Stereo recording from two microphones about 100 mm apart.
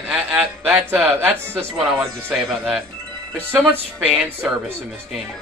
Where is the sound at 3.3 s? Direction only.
20° right (ahead or behind).